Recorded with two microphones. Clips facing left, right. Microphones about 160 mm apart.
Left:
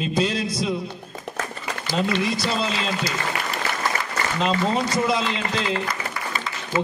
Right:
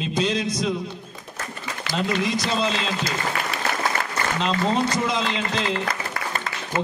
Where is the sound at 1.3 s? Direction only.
80° left.